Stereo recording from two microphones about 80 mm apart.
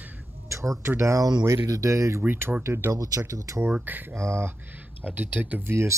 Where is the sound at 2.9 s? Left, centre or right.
Right.